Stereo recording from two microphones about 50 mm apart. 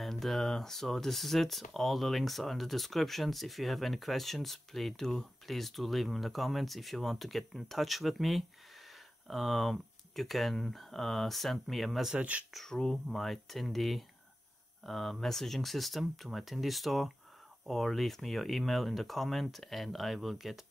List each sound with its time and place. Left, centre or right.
0.0 s speech: centre
12.2 s speech: right
12.5 s speech: centre